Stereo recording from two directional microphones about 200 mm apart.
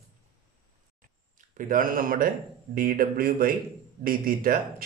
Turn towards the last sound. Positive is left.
turn(degrees=-45)  # may be behind; listen again after turning